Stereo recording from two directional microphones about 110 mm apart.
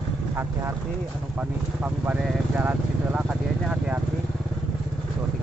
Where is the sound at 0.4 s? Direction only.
20° right (ahead or behind).